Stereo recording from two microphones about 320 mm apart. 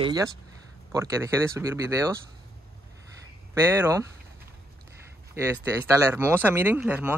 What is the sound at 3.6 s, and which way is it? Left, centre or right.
Speech, centre.